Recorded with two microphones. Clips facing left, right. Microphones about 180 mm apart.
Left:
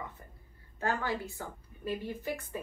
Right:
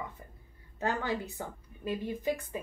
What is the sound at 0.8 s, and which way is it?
A woman's voice, 20° right (ahead or behind).